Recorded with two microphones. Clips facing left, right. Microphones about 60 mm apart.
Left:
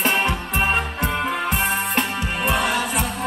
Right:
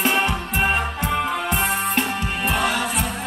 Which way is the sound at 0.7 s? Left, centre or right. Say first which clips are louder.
Even; centre.